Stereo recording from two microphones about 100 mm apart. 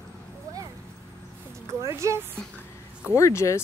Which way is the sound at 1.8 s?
30° right (ahead or behind).